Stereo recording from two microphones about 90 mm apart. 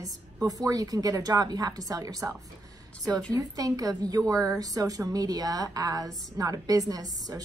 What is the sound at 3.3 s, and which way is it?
A woman's voice, 40° right (ahead or behind).